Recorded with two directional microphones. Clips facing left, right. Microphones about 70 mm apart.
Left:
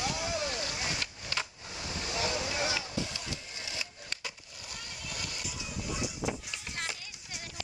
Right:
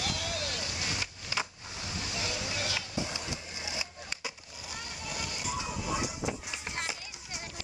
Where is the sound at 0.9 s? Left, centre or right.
Centre.